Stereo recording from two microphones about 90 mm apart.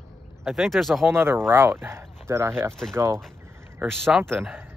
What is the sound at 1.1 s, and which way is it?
Speech, 25° right (ahead or behind).